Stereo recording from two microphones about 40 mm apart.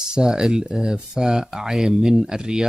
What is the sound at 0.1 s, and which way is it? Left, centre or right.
Speech, centre.